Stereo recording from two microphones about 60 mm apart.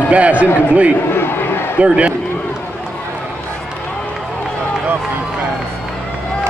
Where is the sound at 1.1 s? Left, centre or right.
Left.